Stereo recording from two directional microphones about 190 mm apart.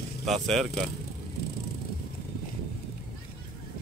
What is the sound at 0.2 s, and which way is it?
Speech, centre (ahead or behind).